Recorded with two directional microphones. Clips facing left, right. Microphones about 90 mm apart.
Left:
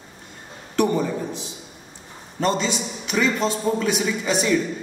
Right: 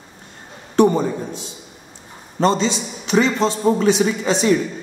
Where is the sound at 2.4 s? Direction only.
25° right (ahead or behind).